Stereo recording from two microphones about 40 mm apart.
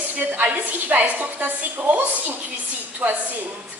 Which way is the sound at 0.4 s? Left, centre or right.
Right.